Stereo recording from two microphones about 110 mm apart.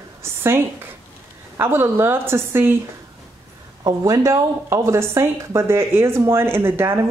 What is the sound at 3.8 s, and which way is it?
Speech, 30° right (ahead or behind).